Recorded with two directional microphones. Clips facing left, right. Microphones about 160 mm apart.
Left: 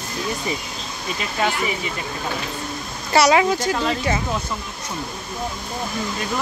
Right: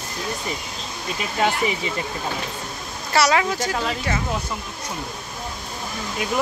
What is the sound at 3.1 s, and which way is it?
Speech, 20° left (ahead or behind).